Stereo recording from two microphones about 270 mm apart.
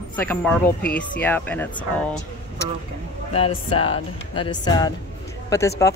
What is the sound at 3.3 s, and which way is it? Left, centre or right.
Speech, left.